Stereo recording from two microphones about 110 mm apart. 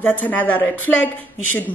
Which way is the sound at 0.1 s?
15° left (ahead or behind).